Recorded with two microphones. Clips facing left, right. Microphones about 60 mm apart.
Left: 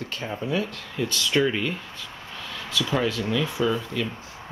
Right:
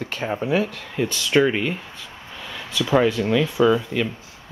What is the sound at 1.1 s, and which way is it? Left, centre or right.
Speech, right.